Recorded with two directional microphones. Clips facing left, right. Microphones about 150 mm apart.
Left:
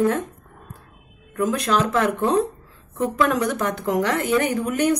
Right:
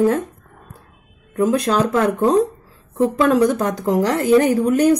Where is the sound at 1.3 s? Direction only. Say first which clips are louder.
Right 4 dB; 35° right (ahead or behind).